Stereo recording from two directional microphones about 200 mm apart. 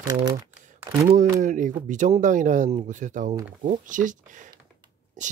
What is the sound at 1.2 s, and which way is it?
Speech, 40° right (ahead or behind).